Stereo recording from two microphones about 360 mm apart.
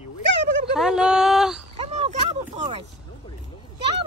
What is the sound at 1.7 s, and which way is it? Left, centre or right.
Speech, centre.